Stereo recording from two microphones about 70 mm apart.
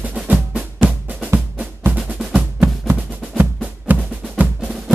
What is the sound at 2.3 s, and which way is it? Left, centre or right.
Music, right.